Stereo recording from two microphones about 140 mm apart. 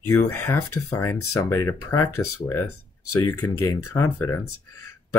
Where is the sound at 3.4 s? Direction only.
30° left (ahead or behind).